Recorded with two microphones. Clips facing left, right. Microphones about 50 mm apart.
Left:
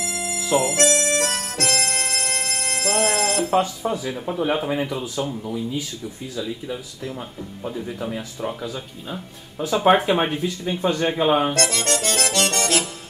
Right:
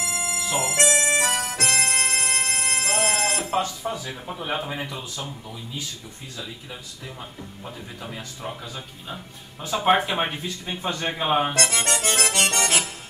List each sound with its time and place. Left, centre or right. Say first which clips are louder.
0.0 s harmonica: even; right
3.5 s speech: left 5 dB; centre
6.3 s speech: left 8 dB; centre
7.6 s speech: left 10 dB; centre
11.5 s accordion: left 2 dB; centre